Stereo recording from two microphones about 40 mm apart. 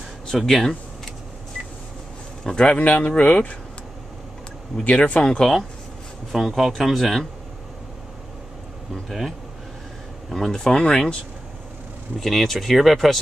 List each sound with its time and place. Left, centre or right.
0.4 s speech: centre
2.4 s speech: centre
2.8 s speech: left
4.8 s speech: left
5.2 s speech: left
6.3 s speech: centre
10.3 s speech: centre
12.2 s speech: centre